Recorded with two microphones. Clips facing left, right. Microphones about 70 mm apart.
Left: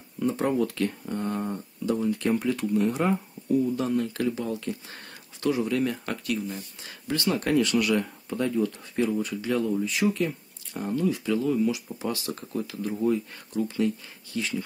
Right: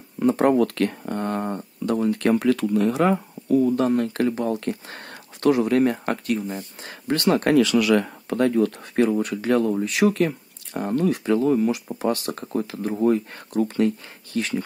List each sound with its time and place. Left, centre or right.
0.2 s speech: right